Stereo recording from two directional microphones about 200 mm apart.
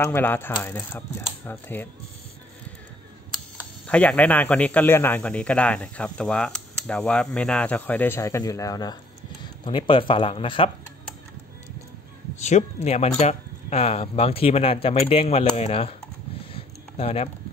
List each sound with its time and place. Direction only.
0.0 s a man's voice: 10° left (ahead or behind)
3.8 s a man's voice: 5° left (ahead or behind); by 10.7 s 25° left (ahead or behind)
12.4 s speech: 35° left (ahead or behind)
16.5 s a sound: 30° left (ahead or behind)